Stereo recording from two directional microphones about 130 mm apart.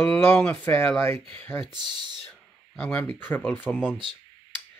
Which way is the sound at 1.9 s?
35° right (ahead or behind).